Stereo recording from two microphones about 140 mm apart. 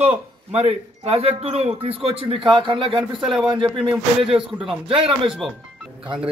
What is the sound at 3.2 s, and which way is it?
Speech, centre (ahead or behind).